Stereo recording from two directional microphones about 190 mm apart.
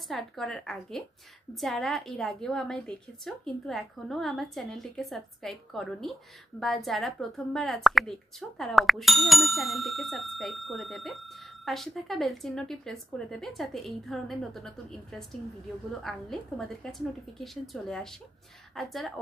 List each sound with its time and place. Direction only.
0.1 s speech: centre (ahead or behind)